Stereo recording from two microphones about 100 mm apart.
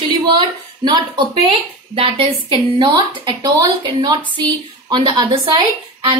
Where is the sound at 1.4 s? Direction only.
70° right (ahead or behind).